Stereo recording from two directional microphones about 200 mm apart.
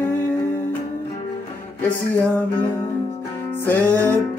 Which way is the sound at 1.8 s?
10° left (ahead or behind).